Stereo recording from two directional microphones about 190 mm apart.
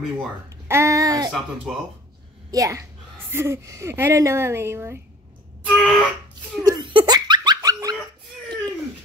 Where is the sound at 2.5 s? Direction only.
15° right (ahead or behind).